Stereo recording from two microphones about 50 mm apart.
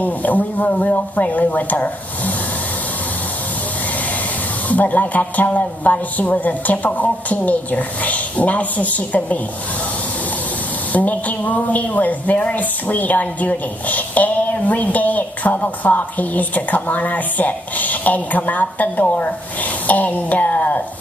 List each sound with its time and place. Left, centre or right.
0.0 s a woman's voice: left
4.6 s a woman's voice: left
10.9 s a woman's voice: left